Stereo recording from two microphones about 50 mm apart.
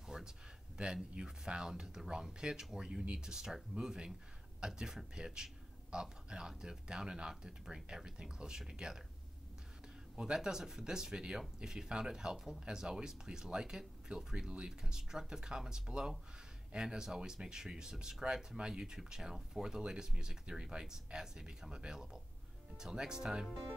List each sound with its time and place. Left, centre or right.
0.1 s a sound: centre
0.8 s a man's voice: centre
10.1 s speech: centre